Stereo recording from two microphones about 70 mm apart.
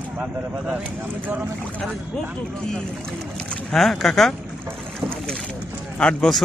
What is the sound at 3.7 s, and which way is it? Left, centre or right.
Speech, centre.